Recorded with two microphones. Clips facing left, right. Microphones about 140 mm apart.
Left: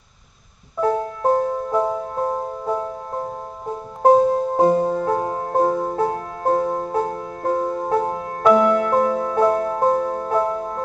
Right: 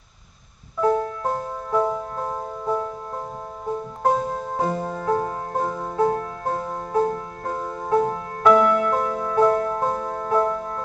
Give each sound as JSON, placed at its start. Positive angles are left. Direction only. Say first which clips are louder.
{"t": 0.7, "sound": "music", "louder": "even", "side_deg": 30}
{"t": 4.6, "sound": "music", "louder": "left 8 dB", "side_deg": 30}